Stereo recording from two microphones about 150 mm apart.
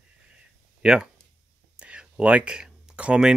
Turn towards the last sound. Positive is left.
turn(degrees=-5)  # may be behind; listen again after turning